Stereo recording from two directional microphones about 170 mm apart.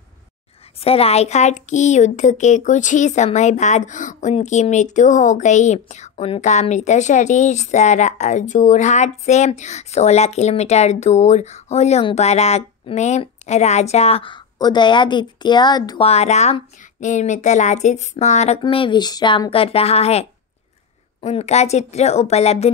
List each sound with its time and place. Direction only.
0.7 s a woman's voice: 35° left (ahead or behind)
16.1 s speech: 40° left (ahead or behind)
18.6 s a woman's voice: 30° left (ahead or behind)